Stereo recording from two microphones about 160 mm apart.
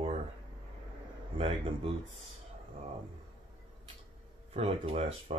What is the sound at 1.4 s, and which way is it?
Speech, 35° right (ahead or behind).